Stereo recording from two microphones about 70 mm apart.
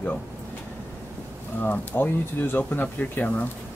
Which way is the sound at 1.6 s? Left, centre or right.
Left.